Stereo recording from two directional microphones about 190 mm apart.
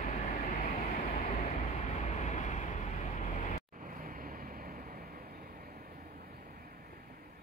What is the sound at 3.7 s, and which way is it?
Vehicle, 45° right (ahead or behind).